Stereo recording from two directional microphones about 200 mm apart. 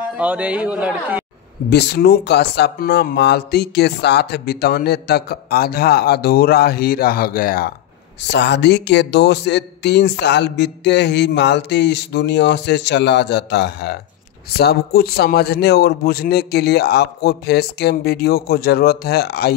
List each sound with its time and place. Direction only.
0.2 s speech: 5° right (ahead or behind)
1.7 s speech: 55° left (ahead or behind)
8.2 s speech: 60° left (ahead or behind)